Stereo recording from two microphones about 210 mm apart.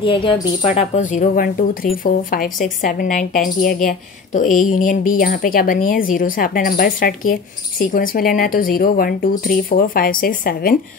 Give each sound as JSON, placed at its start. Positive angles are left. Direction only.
{"t": 0.0, "sound": "speech", "side_deg": 25}